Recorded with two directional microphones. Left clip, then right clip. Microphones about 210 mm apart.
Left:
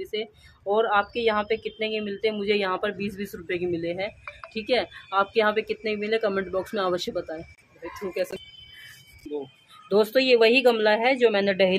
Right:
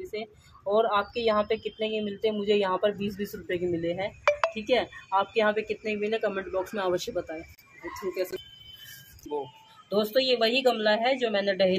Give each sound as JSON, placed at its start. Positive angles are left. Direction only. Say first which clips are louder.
{"t": 0.1, "sound": "a woman's voice", "louder": "left 5 dB", "side_deg": 20}
{"t": 4.2, "sound": "telephone", "louder": "right 17 dB", "side_deg": -45}
{"t": 4.6, "sound": "speech", "louder": "left 1 dB", "side_deg": 15}
{"t": 9.8, "sound": "a woman's voice", "louder": "left 5 dB", "side_deg": 50}